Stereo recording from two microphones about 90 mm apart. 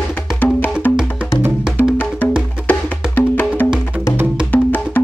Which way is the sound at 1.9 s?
20° left (ahead or behind).